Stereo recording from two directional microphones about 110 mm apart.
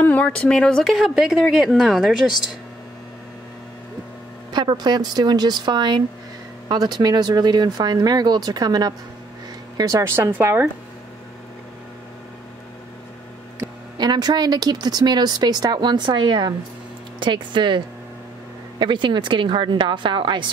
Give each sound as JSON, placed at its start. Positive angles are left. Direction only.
{"t": 0.0, "sound": "a woman's voice", "side_deg": 15}
{"t": 4.5, "sound": "a woman's voice", "side_deg": -40}
{"t": 13.9, "sound": "a woman's voice", "side_deg": -40}